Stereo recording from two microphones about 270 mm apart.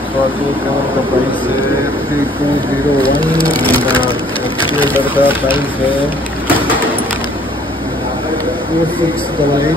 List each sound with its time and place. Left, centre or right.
3.0 s speech: centre
3.4 s speech: centre
5.1 s speech: centre